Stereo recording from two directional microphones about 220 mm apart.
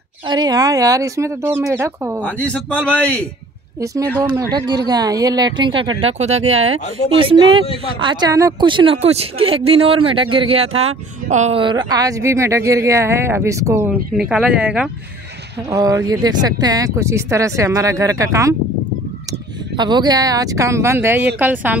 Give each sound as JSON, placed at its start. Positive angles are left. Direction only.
{"t": 0.3, "sound": "speech", "side_deg": -15}
{"t": 2.2, "sound": "a man's voice", "side_deg": 5}
{"t": 3.8, "sound": "speech", "side_deg": -15}
{"t": 6.5, "sound": "speech", "side_deg": -65}
{"t": 7.1, "sound": "a man's voice", "side_deg": -25}
{"t": 15.7, "sound": "speech", "side_deg": -15}
{"t": 19.8, "sound": "speech", "side_deg": -20}